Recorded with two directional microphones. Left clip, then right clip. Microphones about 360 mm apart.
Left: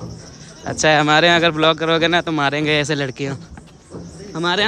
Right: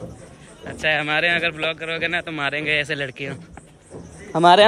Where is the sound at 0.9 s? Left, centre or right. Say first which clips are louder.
Left 6 dB; centre.